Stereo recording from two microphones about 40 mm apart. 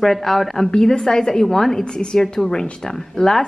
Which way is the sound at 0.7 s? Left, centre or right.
Centre.